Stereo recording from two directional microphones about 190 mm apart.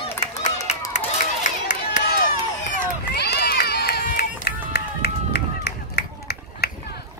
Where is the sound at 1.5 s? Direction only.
40° left (ahead or behind).